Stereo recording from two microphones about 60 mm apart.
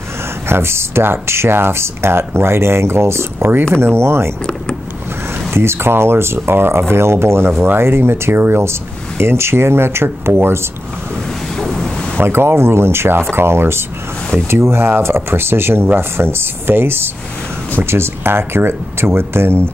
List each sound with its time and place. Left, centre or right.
0.5 s speech: right
5.5 s speech: right
11.6 s a sound: centre
12.2 s speech: right